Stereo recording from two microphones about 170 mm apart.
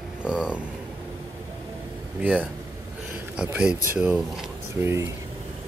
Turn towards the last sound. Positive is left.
turn(degrees=-15)  # may be behind; listen again after turning